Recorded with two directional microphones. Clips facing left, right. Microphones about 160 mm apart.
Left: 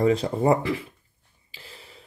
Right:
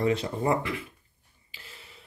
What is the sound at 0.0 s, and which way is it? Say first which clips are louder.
Speech: left 5 dB; 35° left (ahead or behind).